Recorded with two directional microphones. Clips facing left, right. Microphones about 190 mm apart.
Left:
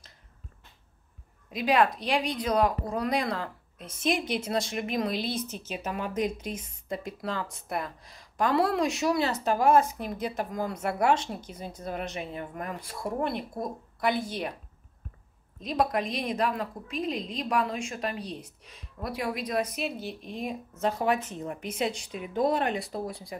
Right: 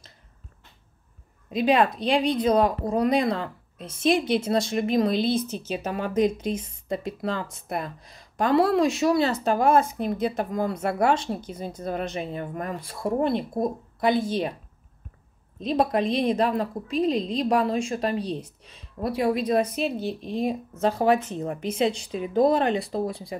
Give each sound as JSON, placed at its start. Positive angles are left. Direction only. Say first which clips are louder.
{"t": 1.5, "sound": "a woman's voice", "louder": "right 3 dB", "side_deg": -25}
{"t": 15.6, "sound": "a woman's voice", "louder": "right 5 dB", "side_deg": -30}